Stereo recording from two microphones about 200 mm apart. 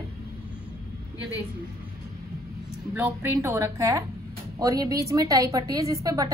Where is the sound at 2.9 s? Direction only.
15° right (ahead or behind).